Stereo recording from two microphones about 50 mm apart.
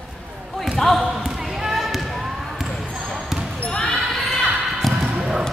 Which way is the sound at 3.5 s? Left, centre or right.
Left.